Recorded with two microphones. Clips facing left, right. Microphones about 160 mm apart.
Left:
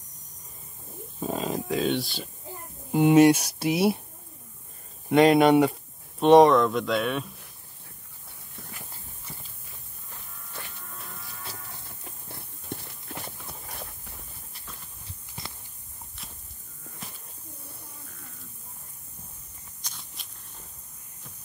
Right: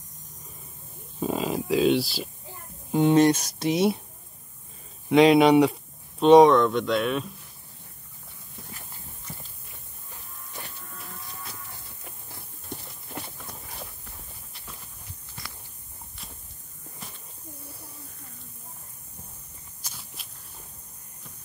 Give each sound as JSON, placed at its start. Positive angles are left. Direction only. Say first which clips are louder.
{"t": 1.2, "sound": "speech", "louder": "right 2 dB", "side_deg": -5}
{"t": 2.9, "sound": "speech", "louder": "left 2 dB", "side_deg": 10}
{"t": 5.1, "sound": "speech", "louder": "right 1 dB", "side_deg": 0}
{"t": 15.0, "sound": "a sound", "louder": "left 3 dB", "side_deg": 25}
{"t": 19.8, "sound": "walk", "louder": "right 1 dB", "side_deg": -5}